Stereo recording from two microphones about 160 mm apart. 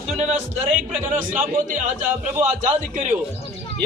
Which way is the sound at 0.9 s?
50° right (ahead or behind).